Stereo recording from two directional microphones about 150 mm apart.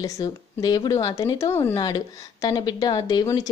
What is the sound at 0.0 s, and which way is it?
Speech, 25° left (ahead or behind).